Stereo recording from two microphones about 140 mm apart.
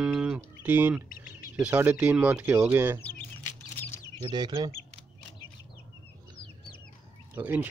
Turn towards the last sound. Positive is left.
turn(degrees=-10)  # may be behind; listen again after turning